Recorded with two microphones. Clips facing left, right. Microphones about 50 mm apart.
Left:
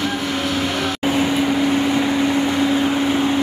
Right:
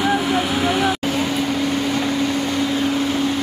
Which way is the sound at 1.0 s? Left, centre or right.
Centre.